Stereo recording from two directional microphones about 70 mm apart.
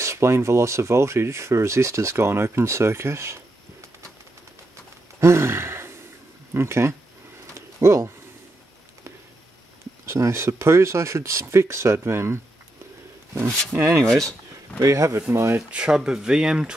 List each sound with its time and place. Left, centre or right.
0.0 s speech: right
5.2 s sigh: right
6.5 s speech: right
7.5 s a sound: right
10.0 s speech: right
13.7 s speech: right
14.8 s speech: right
15.7 s speech: centre